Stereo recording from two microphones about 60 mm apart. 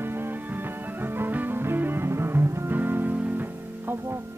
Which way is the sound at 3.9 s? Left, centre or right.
Right.